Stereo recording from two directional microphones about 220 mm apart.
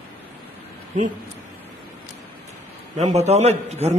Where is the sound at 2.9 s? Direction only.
30° right (ahead or behind).